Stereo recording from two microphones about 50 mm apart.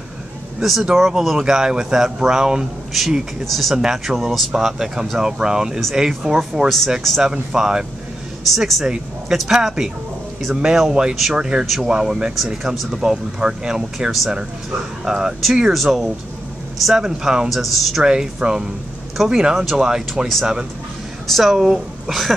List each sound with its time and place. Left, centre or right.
0.6 s speech: centre
3.4 s speech: centre
8.5 s speech: centre
8.8 s speech: centre
11.6 s speech: centre
11.9 s speech: centre
17.5 s speech: centre
18.0 s speech: centre
21.3 s speech: centre